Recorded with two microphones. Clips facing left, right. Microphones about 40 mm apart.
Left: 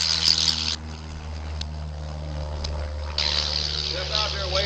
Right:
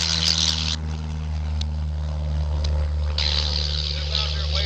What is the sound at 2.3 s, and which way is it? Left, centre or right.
Vehicle, right.